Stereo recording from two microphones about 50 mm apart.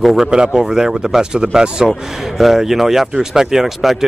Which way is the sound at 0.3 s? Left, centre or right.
Centre.